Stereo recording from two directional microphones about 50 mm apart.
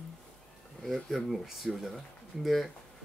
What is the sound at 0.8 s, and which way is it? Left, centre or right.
Speech, centre.